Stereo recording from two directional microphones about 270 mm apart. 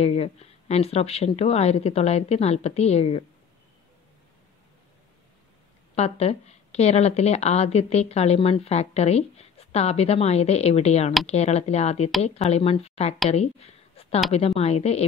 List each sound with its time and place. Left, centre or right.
0.0 s a woman's voice: left
5.9 s a woman's voice: left
13.3 s a sound: left
14.3 s a woman's voice: left